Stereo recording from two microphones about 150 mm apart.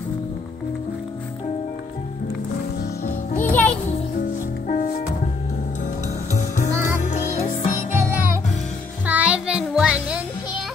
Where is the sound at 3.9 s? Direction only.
60° left (ahead or behind).